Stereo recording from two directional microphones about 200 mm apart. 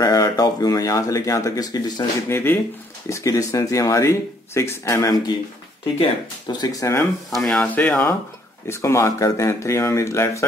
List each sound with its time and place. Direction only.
0.0 s speech: 20° left (ahead or behind)
6.4 s speech: 20° left (ahead or behind)
7.2 s speech: centre (ahead or behind)